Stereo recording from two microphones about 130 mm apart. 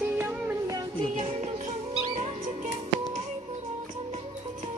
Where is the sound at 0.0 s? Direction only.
10° right (ahead or behind).